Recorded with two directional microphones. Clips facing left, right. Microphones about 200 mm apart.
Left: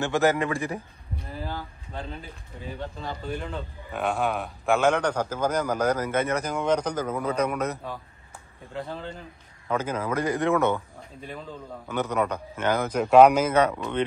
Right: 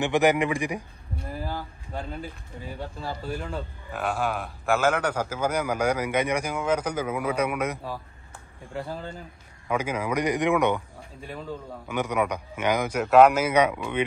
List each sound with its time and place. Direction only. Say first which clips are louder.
0.0 s a man's voice: right 1 dB; 15° right (ahead or behind)
1.4 s a sound: right 1 dB; 10° right (ahead or behind)
3.0 s a man's voice: right 2 dB; 5° right (ahead or behind)
11.9 s a man's voice: even; 10° right (ahead or behind)